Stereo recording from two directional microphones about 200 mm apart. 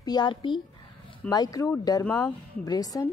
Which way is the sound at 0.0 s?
20° left (ahead or behind).